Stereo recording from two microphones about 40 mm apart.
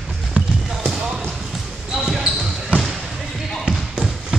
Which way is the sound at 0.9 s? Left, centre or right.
Centre.